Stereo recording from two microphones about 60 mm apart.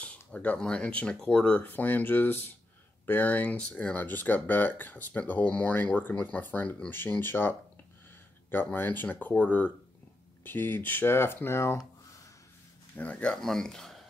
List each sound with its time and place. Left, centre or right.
0.0 s a sound: left
0.6 s speech: centre
1.6 s speech: left
8.7 s speech: left
12.9 s speech: left
13.4 s speech: centre